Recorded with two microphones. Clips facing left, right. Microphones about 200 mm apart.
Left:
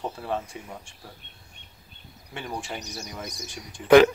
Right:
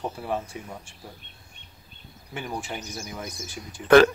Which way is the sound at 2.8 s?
40° left (ahead or behind).